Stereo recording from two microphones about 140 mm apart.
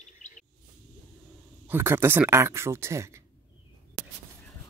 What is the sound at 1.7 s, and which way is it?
Speech, 15° right (ahead or behind).